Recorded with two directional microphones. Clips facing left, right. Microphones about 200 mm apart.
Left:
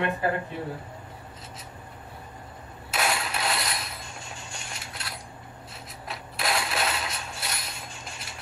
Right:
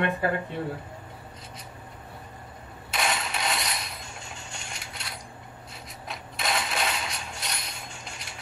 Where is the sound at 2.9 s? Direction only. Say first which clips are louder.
Left 1 dB; 5° left (ahead or behind).